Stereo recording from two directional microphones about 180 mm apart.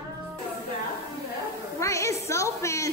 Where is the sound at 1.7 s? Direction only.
15° left (ahead or behind).